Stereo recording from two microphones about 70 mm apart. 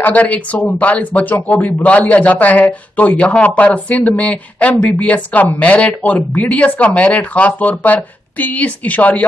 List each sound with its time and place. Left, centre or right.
0.0 s speech: left